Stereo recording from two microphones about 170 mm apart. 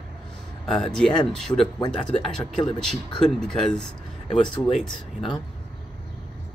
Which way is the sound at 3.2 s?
5° left (ahead or behind).